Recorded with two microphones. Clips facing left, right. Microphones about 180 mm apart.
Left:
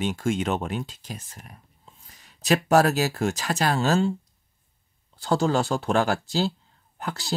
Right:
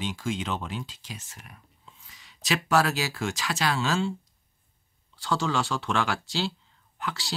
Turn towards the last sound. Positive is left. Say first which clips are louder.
# left 4 dB
turn(degrees=45)  # may be behind; listen again after turning